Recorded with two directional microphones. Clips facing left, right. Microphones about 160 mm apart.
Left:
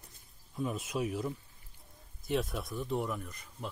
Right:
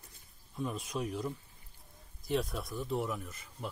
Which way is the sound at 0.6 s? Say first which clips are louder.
Left 2 dB; 5° left (ahead or behind).